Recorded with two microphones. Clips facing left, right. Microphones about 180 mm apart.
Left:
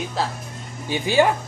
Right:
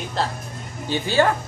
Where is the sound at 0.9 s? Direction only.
15° left (ahead or behind).